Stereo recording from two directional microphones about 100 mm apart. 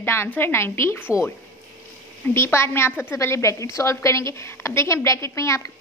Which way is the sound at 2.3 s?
25° left (ahead or behind).